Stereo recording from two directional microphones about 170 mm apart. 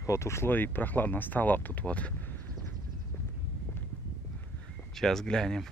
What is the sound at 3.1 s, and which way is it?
Walk, 15° left (ahead or behind).